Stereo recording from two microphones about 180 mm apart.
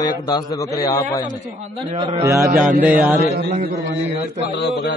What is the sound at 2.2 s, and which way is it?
Speech, 15° right (ahead or behind).